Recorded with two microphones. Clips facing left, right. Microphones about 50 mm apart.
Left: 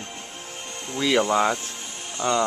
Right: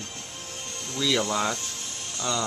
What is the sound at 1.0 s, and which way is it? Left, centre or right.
Speech, centre.